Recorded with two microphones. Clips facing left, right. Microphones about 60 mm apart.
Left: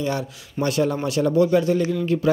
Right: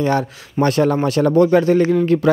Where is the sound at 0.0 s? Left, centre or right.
Right.